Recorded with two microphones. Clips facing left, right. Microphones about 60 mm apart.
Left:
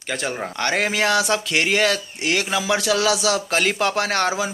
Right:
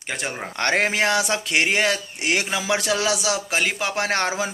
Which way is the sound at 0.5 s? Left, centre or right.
Right.